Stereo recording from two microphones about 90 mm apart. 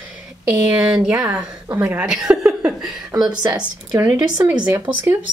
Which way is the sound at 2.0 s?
5° right (ahead or behind).